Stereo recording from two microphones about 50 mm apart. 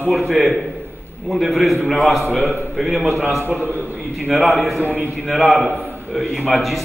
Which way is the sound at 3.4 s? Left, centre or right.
Right.